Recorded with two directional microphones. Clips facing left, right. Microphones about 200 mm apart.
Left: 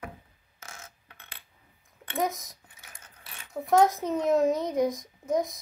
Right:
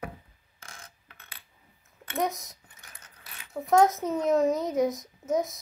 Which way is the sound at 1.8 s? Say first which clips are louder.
Even; centre (ahead or behind).